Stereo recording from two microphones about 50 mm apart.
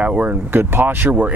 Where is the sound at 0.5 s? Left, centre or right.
Right.